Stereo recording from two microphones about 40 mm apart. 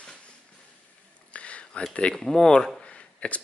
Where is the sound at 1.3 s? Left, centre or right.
Left.